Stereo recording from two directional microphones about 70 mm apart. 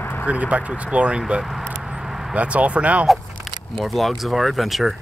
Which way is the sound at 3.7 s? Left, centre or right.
Centre.